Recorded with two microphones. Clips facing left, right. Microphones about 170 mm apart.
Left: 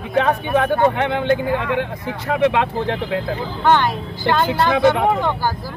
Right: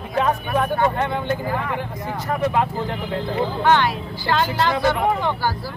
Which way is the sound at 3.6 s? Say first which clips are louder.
Left 2 dB; 45° left (ahead or behind).